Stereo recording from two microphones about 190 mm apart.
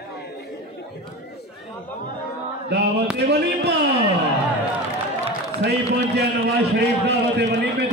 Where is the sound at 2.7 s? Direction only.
60° right (ahead or behind).